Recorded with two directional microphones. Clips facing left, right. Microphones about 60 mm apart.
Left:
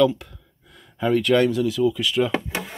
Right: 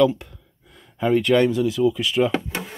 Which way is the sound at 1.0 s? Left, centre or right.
Centre.